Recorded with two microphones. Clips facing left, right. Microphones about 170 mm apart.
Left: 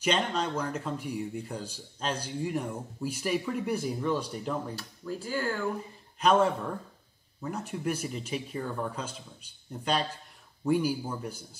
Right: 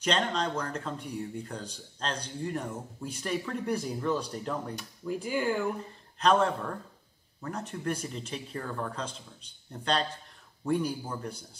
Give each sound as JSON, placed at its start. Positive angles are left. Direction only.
{"t": 0.0, "sound": "speech", "side_deg": 10}
{"t": 4.7, "sound": "speech", "side_deg": -15}
{"t": 6.1, "sound": "a man's voice", "side_deg": 10}